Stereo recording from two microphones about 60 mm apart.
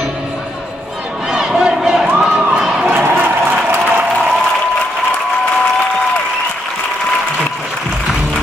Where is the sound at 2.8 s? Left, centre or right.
Right.